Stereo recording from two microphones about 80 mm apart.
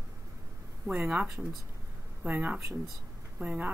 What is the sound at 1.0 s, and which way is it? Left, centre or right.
Speech, centre.